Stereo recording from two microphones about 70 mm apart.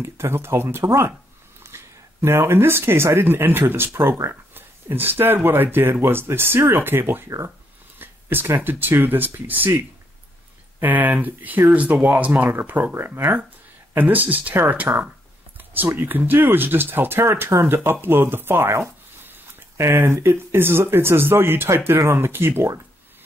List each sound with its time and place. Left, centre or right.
0.0 s speech: right
1.6 s a sound: right
2.2 s speech: right
7.2 s speech: right
8.0 s speech: right
18.7 s a sound: right
19.8 s speech: right